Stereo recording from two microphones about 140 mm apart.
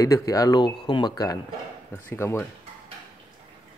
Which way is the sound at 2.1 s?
15° left (ahead or behind).